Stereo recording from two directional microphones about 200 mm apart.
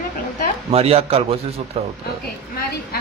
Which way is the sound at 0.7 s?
30° right (ahead or behind).